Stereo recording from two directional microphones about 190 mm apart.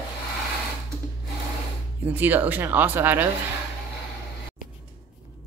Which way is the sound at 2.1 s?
10° right (ahead or behind).